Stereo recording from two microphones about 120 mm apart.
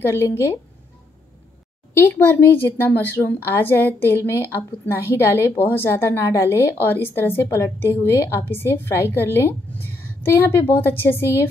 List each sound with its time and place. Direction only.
0.0 s a woman's voice: 20° left (ahead or behind)
2.0 s a woman's voice: 20° left (ahead or behind)